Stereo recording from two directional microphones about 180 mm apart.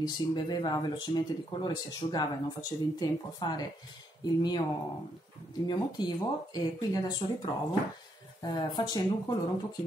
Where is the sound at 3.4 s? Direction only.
25° left (ahead or behind).